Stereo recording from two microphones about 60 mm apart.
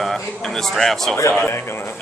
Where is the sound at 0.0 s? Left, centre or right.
Centre.